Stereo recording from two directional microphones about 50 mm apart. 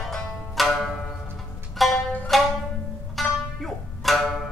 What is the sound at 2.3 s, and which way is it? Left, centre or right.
Music, centre.